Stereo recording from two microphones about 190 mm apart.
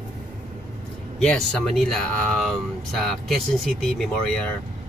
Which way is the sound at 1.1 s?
5° left (ahead or behind).